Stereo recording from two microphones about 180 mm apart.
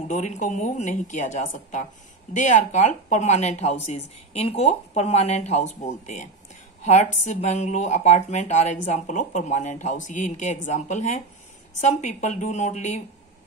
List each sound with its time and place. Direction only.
0.1 s speech: 45° left (ahead or behind)